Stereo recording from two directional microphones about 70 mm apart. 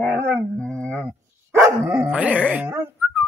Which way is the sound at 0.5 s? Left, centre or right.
Centre.